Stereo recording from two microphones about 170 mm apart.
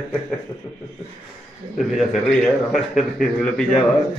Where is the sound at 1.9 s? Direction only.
Centre (ahead or behind).